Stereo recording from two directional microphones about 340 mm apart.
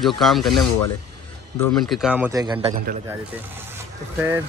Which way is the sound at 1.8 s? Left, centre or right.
Centre.